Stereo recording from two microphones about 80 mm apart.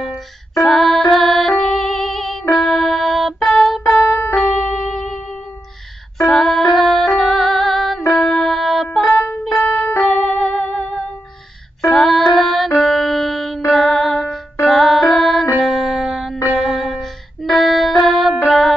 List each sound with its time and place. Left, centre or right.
0.0 s music: centre
6.2 s music: centre
9.1 s music: left
10.0 s music: centre